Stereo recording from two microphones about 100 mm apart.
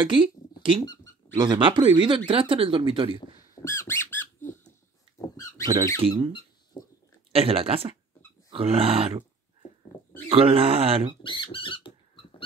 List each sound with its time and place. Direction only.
0.0 s a sound: 50° right (ahead or behind)
1.3 s speech: 35° right (ahead or behind)
1.6 s speech: 55° right (ahead or behind)
3.5 s squeak: 30° left (ahead or behind)
5.2 s squeak: 35° left (ahead or behind)
5.9 s speech: 60° right (ahead or behind)
7.3 s speech: 75° right (ahead or behind)
10.3 s speech: 70° right (ahead or behind)
11.2 s rodents: 55° left (ahead or behind)